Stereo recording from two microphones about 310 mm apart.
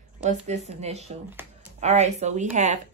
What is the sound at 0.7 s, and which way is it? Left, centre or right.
Speech, right.